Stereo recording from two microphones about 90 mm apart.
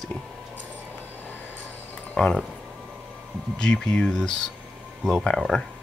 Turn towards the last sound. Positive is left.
turn(degrees=5)  # may be behind; listen again after turning